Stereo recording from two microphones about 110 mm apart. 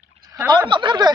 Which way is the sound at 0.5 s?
45° right (ahead or behind).